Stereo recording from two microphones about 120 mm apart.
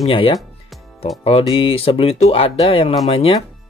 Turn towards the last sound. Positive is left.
turn(degrees=50)  # may be behind; listen again after turning